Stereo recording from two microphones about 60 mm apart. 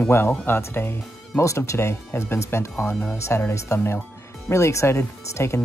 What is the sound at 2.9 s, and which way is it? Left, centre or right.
Speech, left.